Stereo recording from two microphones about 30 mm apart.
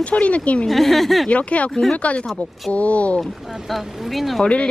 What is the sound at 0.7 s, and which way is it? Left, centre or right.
Speech, centre.